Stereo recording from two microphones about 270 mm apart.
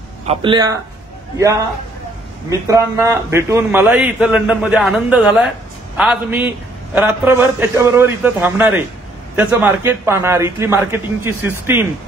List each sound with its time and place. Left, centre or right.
0.3 s a man's voice: centre
2.7 s a man's voice: centre